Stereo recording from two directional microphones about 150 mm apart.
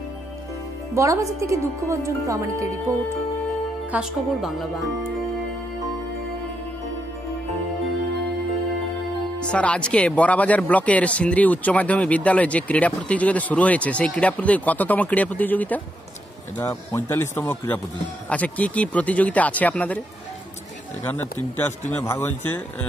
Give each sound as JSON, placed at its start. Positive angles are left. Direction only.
{"t": 0.9, "sound": "a woman's voice", "side_deg": -20}
{"t": 3.9, "sound": "speech", "side_deg": -5}
{"t": 9.4, "sound": "speech", "side_deg": 5}
{"t": 21.0, "sound": "speech", "side_deg": 10}